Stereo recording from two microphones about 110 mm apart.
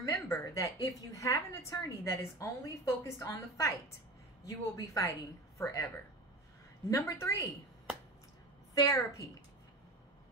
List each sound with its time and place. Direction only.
0.1 s a woman's voice: 30° left (ahead or behind)
6.9 s a woman's voice: 25° left (ahead or behind)
8.7 s a woman's voice: 30° left (ahead or behind)